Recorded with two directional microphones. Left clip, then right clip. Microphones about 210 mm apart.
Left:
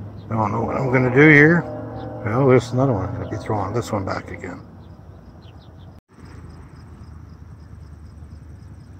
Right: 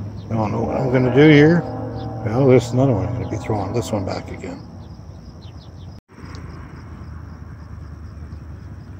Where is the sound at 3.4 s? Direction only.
40° left (ahead or behind).